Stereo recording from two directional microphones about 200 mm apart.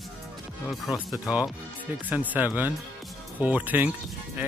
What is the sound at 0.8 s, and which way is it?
Speech, centre (ahead or behind).